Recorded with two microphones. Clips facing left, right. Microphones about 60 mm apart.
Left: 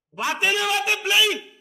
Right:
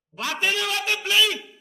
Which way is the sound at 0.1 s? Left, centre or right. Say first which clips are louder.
Left 3 dB; centre.